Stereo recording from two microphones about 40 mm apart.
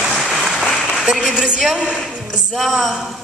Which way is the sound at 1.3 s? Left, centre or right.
Centre.